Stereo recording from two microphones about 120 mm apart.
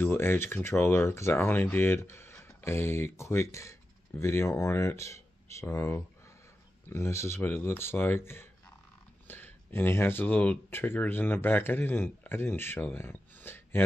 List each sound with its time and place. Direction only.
0.0 s speech: 20° left (ahead or behind)